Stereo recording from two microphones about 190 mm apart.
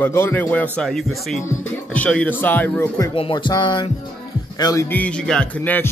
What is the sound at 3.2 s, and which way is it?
A man's voice, 25° left (ahead or behind).